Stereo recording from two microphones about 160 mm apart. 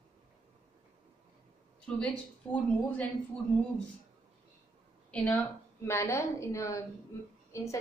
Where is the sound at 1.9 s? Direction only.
10° left (ahead or behind).